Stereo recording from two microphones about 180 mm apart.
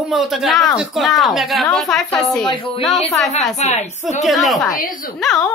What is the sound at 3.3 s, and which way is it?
Speech, 40° left (ahead or behind).